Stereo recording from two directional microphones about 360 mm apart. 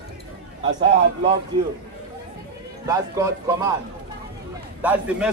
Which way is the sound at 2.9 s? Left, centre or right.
Centre.